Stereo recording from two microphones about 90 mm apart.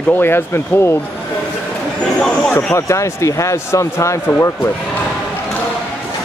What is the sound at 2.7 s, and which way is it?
Speech, 35° left (ahead or behind).